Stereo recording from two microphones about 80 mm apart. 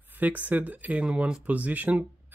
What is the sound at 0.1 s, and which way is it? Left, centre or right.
Speech, centre.